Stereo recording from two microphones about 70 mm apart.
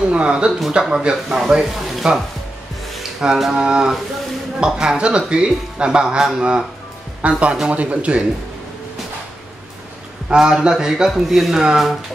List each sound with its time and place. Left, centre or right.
0.1 s speech: centre
10.3 s speech: centre